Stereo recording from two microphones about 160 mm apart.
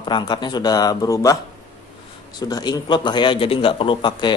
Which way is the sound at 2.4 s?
25° left (ahead or behind).